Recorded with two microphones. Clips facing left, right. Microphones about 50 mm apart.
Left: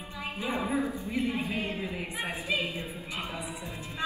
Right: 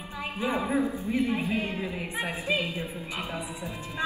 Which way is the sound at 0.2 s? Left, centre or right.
Right.